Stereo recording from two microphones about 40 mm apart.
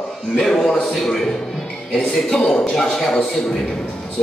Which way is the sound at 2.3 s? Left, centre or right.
Centre.